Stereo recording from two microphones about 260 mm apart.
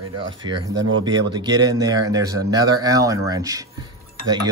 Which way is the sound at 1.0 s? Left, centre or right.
Centre.